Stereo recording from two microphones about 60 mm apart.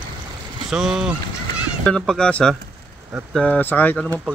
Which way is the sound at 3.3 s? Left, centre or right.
Centre.